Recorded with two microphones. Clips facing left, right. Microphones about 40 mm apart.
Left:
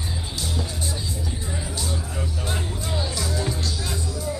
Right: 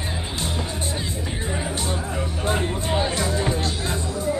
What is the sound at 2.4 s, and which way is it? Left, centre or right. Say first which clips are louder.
Music: right 6 dB; right.